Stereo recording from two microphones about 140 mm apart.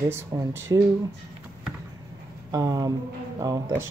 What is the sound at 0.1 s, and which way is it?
Speech, 15° right (ahead or behind).